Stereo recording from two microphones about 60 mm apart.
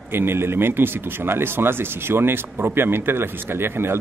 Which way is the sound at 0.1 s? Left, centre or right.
Right.